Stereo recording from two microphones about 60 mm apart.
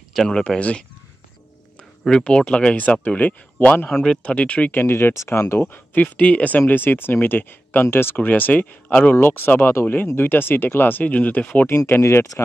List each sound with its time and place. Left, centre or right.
0.1 s speech: centre
0.6 s speech: left
2.0 s speech: centre
2.7 s speech: left
3.9 s speech: centre
4.2 s speech: left
4.8 s speech: left
5.1 s speech: left
5.6 s speech: left
6.7 s speech: left
8.3 s speech: left
9.2 s speech: left
11.6 s speech: left